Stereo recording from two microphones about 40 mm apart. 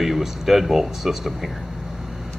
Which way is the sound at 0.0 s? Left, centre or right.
Centre.